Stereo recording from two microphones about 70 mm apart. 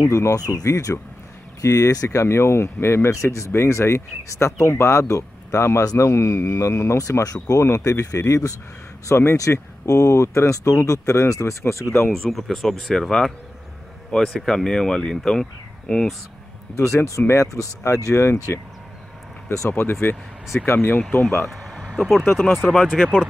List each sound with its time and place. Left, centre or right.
0.0 s speech: left
12.1 s speech: centre
14.4 s speech: centre
16.7 s speech: left
19.7 s speech: left
21.5 s a sound: centre
21.9 s speech: centre
22.8 s speech: centre